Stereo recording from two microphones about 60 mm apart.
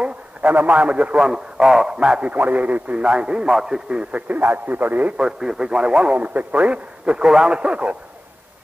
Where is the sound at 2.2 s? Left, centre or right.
Right; by 4.0 s centre.